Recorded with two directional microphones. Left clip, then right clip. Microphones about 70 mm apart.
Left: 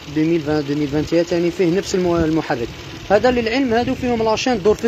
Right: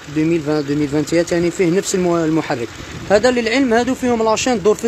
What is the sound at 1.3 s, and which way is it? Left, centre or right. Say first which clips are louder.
Speech: right 1 dB; right.